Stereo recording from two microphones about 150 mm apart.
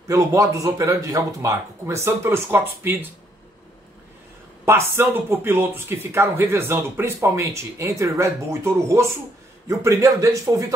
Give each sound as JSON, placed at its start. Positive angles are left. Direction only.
{"t": 0.1, "sound": "a man's voice", "side_deg": -20}
{"t": 4.6, "sound": "a man's voice", "side_deg": -15}